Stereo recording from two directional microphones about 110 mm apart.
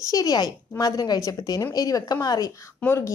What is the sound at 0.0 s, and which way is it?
A woman's voice, 30° left (ahead or behind).